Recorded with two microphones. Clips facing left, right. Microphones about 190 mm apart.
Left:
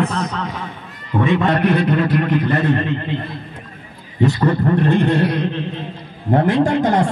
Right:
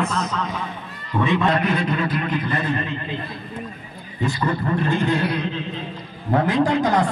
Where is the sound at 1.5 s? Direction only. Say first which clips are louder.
Left 5 dB; 60° left (ahead or behind).